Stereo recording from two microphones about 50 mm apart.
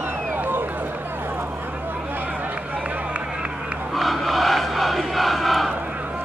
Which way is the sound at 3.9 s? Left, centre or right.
Centre.